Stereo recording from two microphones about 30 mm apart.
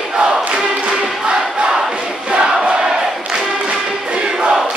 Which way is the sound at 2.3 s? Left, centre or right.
Right.